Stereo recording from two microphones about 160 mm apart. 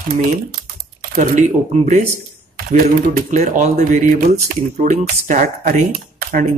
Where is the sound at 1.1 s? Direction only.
45° right (ahead or behind).